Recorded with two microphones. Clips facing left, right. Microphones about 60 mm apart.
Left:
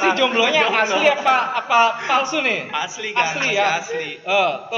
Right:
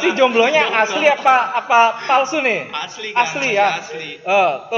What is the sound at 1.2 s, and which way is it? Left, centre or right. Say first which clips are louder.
A woman's voice: right 4 dB; centre.